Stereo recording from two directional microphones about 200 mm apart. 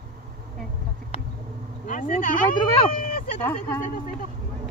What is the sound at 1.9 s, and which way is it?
Speech, 40° left (ahead or behind).